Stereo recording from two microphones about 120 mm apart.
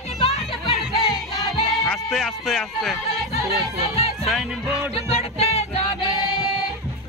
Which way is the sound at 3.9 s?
55° left (ahead or behind).